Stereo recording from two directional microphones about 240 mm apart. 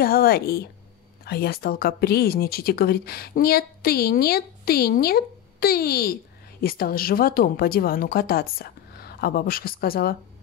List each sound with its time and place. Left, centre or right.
0.0 s speech: left